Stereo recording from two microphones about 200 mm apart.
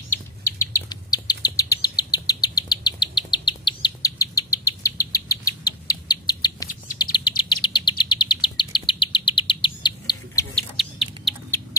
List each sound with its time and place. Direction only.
0.6 s bird: 15° left (ahead or behind)
7.0 s chirp: 20° left (ahead or behind)
10.5 s bird: centre (ahead or behind)